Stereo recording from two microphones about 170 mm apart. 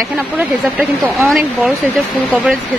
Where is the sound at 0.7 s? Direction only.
5° right (ahead or behind).